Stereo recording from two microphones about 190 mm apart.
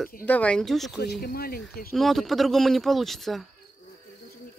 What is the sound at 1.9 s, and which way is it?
Speech, centre (ahead or behind).